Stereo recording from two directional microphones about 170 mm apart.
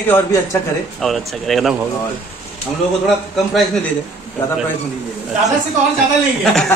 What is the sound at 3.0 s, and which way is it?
Speech, centre (ahead or behind).